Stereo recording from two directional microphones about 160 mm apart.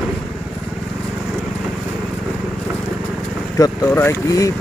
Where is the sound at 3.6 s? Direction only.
20° left (ahead or behind).